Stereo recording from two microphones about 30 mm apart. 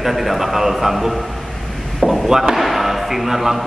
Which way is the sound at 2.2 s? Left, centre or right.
Centre.